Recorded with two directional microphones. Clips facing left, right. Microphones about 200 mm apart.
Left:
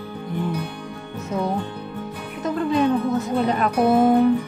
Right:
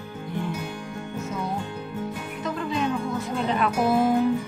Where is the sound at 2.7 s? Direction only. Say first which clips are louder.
Left 8 dB; 60° left (ahead or behind).